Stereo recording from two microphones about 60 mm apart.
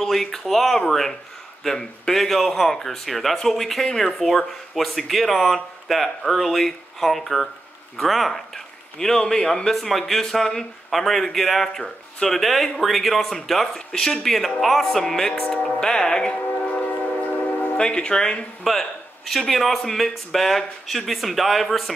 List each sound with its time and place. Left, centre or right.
0.0 s speech: centre
18.6 s speech: centre